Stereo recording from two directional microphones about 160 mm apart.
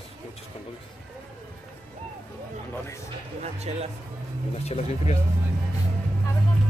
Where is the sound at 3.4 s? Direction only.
40° right (ahead or behind).